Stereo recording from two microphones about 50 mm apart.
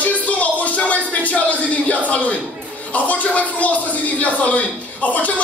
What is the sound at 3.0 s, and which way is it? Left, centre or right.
A man's voice, left.